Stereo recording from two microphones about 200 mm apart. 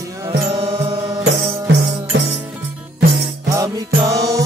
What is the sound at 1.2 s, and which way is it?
Music, 60° right (ahead or behind).